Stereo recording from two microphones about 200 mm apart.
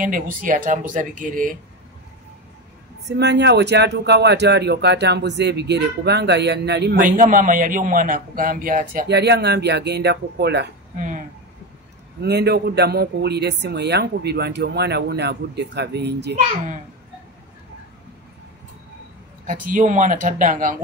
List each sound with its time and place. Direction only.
0.0 s speech: 45° right (ahead or behind)
3.1 s speech: 60° right (ahead or behind)
12.2 s speech: 55° right (ahead or behind)
19.4 s speech: 40° right (ahead or behind)